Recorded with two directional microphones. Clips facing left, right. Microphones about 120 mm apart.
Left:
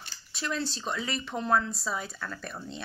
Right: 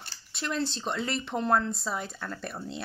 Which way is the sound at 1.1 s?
25° right (ahead or behind).